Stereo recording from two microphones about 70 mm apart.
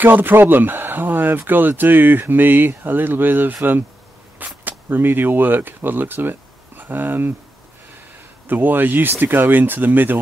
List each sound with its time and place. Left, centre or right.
0.0 s speech: right
4.6 s speech: right
8.5 s speech: right